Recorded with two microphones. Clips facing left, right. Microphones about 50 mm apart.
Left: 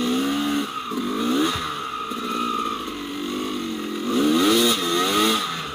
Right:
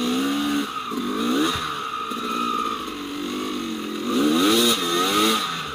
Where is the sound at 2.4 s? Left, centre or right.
Left.